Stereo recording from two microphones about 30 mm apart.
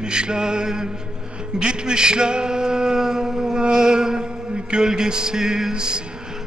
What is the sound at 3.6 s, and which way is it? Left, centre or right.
Mantra, right.